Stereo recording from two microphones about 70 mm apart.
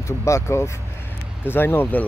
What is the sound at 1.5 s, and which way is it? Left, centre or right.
Speech, left.